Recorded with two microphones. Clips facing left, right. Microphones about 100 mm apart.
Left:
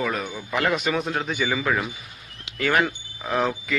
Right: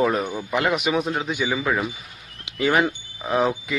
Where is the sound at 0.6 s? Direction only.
15° right (ahead or behind).